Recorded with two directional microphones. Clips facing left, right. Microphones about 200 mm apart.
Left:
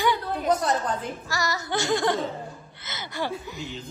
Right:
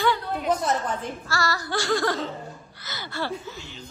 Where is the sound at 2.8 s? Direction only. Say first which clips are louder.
Even; 20° left (ahead or behind).